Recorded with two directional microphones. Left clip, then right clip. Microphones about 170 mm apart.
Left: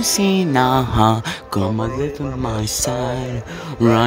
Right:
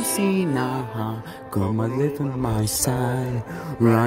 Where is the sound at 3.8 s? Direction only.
25° left (ahead or behind).